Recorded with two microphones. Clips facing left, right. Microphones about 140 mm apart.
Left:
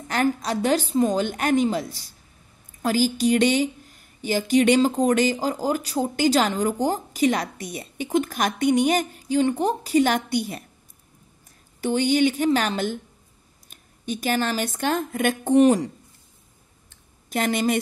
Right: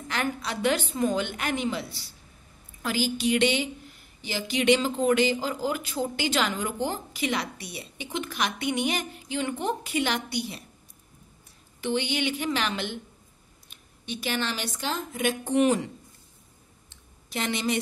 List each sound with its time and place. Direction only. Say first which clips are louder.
0.1 s a woman's voice: left 7 dB; 40° left (ahead or behind)
11.8 s a woman's voice: left 8 dB; 40° left (ahead or behind)
15.6 s a woman's voice: left 5 dB; 40° left (ahead or behind)
17.3 s a woman's voice: left 6 dB; 50° left (ahead or behind)